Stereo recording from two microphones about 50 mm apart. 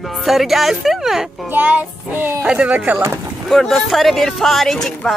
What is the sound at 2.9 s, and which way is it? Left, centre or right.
Music, right.